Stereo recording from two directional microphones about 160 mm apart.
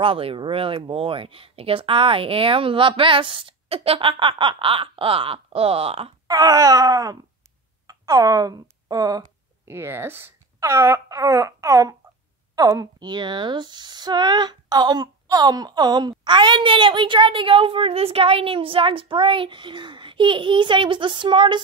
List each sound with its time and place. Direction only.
0.0 s speech: 35° right (ahead or behind)
6.2 s speech: 25° right (ahead or behind)